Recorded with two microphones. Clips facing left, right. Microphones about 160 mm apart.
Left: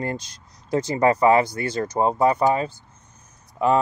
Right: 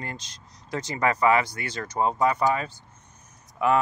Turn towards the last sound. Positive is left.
turn(degrees=35)  # may be behind; listen again after turning